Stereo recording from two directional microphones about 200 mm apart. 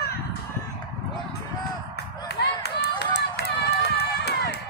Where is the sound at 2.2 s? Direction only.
55° left (ahead or behind).